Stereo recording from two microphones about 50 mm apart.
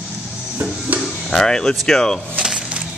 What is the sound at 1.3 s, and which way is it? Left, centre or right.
Speech, centre.